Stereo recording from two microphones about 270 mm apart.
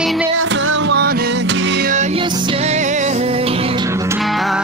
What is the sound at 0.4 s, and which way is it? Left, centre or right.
Music, right.